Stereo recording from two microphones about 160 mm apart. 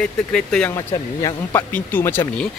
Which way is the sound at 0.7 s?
15° left (ahead or behind).